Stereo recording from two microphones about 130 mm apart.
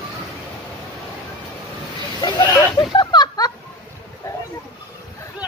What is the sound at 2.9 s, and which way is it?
Snicker, 35° left (ahead or behind).